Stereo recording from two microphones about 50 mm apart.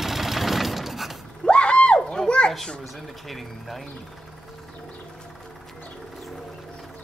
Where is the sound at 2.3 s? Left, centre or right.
Centre.